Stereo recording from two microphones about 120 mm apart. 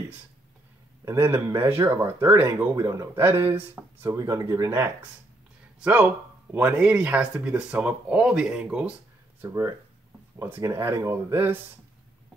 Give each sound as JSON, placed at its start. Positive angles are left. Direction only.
{"t": 1.0, "sound": "speech", "side_deg": -20}
{"t": 9.4, "sound": "speech", "side_deg": -25}